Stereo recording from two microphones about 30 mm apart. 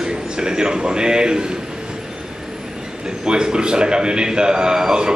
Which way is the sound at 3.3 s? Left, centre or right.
Right.